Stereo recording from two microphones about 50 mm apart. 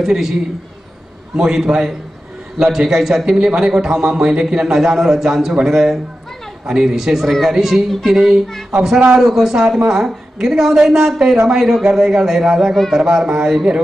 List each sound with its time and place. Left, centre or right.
0.0 s a man's voice: centre
9.6 s a man's voice: centre